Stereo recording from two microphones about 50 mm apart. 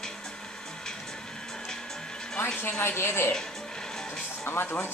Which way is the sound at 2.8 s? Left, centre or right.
Left.